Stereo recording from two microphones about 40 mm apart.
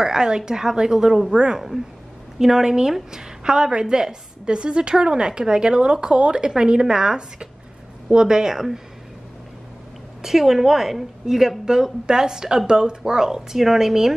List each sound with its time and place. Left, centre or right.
0.0 s a woman's voice: centre
10.2 s a woman's voice: centre